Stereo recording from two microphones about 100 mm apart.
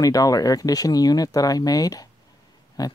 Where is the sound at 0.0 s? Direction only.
35° left (ahead or behind).